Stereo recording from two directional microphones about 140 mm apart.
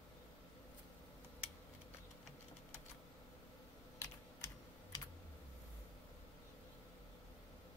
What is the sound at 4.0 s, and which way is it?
Typing, 20° left (ahead or behind).